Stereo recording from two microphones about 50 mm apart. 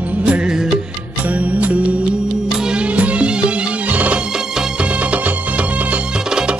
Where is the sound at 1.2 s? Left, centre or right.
Right.